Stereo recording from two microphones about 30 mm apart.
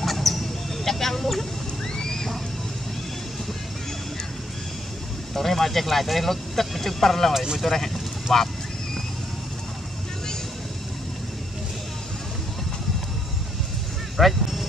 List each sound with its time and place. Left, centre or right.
0.0 s a sound: centre
2.0 s slosh: centre
5.3 s speech: centre
14.1 s vehicle: centre